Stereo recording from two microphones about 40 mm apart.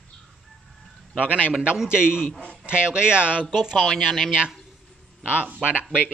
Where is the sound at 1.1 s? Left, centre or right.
Right.